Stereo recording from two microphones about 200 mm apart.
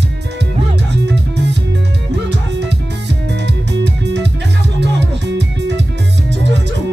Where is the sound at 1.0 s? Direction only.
60° right (ahead or behind).